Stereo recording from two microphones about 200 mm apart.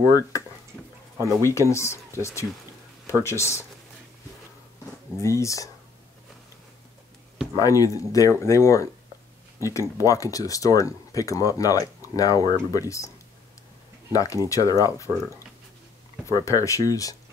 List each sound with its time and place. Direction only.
1.2 s speech: 15° left (ahead or behind)
5.2 s speech: 15° left (ahead or behind)
7.5 s speech: 15° left (ahead or behind)
14.1 s speech: 15° left (ahead or behind)